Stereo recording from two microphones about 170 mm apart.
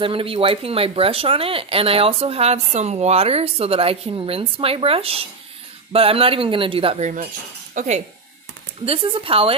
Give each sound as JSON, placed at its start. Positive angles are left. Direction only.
{"t": 0.0, "sound": "speech", "side_deg": -30}
{"t": 7.7, "sound": "speech", "side_deg": -45}
{"t": 8.8, "sound": "speech", "side_deg": -35}